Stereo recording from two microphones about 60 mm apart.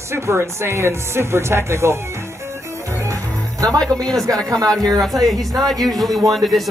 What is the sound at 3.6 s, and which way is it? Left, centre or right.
Speech, right.